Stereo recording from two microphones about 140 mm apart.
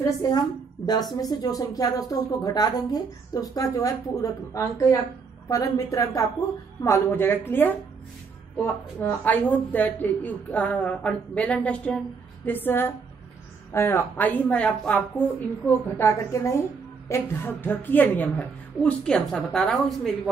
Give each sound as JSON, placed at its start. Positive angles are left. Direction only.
{"t": 0.0, "sound": "a woman's voice", "side_deg": 30}